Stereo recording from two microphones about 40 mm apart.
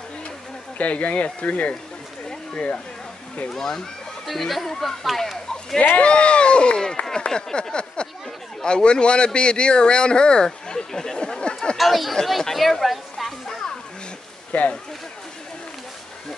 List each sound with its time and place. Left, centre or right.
0.7 s speech: left
2.2 s a sound: left
3.4 s speech: centre
4.3 s speech: centre
5.9 s speech: left
7.7 s a sound: left
8.6 s speech: left
11.7 s speech: centre
14.5 s speech: left